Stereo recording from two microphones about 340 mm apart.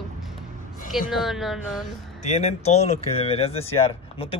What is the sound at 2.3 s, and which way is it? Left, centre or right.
Speech, centre.